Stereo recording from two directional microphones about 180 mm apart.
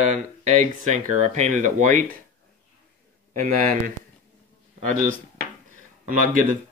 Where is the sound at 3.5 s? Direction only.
45° right (ahead or behind).